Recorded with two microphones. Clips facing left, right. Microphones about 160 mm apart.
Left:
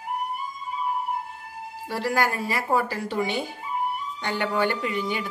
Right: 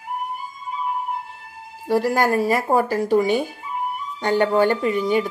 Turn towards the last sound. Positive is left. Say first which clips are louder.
# right 8 dB
turn(degrees=-40)  # may be behind; listen again after turning